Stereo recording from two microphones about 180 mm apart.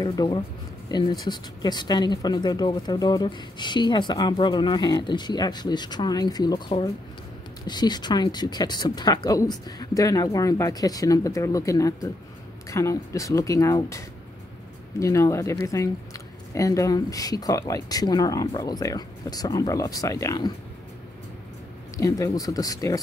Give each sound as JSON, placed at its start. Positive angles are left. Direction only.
{"t": 0.0, "sound": "speech", "side_deg": 25}
{"t": 7.6, "sound": "speech", "side_deg": 25}
{"t": 21.9, "sound": "speech", "side_deg": 15}